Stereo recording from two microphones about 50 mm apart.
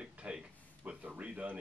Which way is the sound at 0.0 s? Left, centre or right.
Right.